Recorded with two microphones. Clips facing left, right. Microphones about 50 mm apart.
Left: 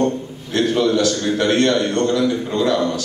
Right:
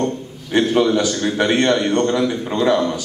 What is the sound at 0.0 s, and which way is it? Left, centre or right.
A man's voice, centre.